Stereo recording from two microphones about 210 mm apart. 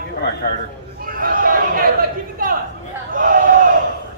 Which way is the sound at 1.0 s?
40° right (ahead or behind).